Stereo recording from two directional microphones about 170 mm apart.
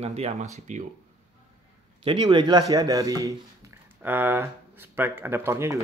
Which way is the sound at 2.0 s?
30° right (ahead or behind).